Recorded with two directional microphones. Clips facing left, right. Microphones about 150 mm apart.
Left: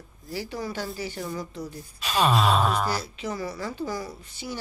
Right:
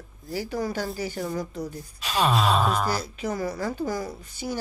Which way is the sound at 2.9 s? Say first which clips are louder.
Right 2 dB; 40° right (ahead or behind).